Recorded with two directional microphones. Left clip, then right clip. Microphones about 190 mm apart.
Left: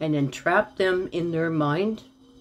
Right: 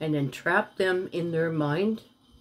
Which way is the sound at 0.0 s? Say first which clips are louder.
Left 3 dB; 5° right (ahead or behind).